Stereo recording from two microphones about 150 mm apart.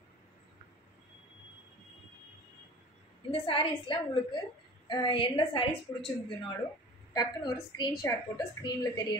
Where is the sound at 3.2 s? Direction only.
35° left (ahead or behind).